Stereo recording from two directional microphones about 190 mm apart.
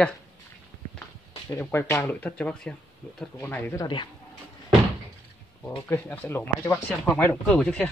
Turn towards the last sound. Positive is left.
turn(degrees=5)  # may be behind; listen again after turning